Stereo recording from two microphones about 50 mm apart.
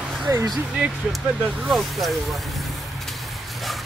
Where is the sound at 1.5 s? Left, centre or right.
Centre.